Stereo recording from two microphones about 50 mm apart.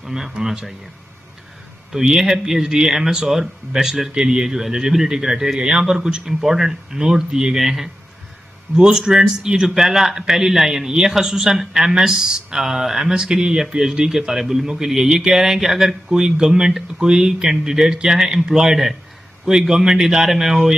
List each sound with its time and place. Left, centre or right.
0.0 s speech: centre
1.9 s speech: centre
5.6 s speech: right; by 7.9 s centre
8.7 s speech: centre
16.1 s speech: centre